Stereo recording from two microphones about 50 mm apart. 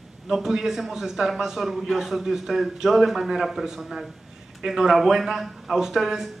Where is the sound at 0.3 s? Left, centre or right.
Centre.